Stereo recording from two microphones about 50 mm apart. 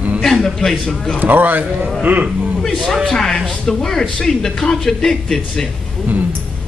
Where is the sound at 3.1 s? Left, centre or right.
Centre.